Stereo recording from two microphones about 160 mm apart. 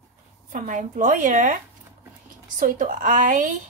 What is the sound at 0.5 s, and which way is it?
A woman's voice, 55° right (ahead or behind).